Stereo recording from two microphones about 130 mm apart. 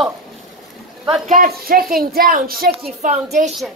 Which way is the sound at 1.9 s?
90° right.